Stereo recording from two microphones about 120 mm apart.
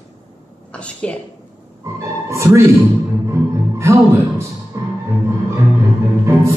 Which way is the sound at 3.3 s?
25° right (ahead or behind).